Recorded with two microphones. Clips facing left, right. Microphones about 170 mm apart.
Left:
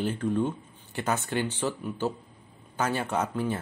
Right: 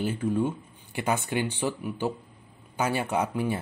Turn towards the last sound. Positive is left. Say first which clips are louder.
# right 1 dB
turn(degrees=-10)  # may be behind; listen again after turning